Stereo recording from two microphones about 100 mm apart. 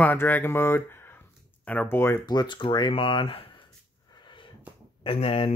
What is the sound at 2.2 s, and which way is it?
Speech, 45° left (ahead or behind).